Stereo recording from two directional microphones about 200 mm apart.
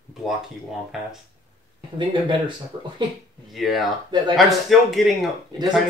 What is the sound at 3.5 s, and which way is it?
Speech, centre (ahead or behind).